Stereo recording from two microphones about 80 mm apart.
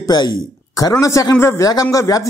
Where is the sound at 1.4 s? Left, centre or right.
Left.